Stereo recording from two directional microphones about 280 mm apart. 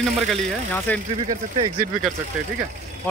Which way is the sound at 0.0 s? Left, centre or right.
Centre.